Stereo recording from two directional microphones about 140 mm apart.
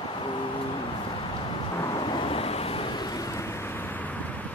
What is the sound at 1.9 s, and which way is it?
Vehicle, 35° left (ahead or behind).